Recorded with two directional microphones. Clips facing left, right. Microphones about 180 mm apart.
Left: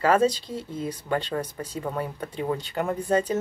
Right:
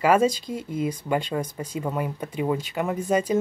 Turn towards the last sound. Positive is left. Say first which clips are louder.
# right 1 dB
turn(degrees=-10)  # may be behind; listen again after turning